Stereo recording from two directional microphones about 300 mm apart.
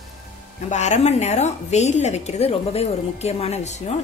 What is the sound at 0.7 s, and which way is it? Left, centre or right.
A woman's voice, left.